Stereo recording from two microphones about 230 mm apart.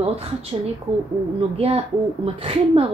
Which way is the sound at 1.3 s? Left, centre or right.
Right.